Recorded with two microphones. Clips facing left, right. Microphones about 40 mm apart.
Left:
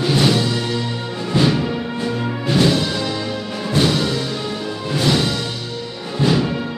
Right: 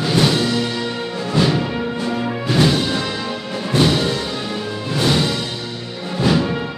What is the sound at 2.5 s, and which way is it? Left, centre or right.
Music, centre.